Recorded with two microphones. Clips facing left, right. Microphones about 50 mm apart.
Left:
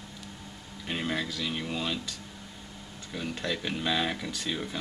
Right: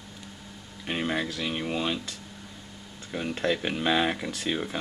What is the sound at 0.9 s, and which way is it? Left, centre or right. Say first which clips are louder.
Speech: right 3 dB; right.